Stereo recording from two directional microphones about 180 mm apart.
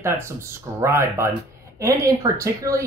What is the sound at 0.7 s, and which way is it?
Speech, 15° right (ahead or behind).